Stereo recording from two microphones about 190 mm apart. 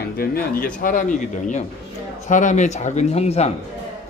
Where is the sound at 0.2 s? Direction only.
50° left (ahead or behind).